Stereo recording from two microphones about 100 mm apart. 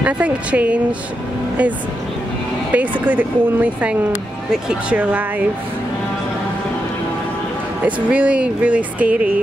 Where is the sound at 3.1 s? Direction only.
15° right (ahead or behind).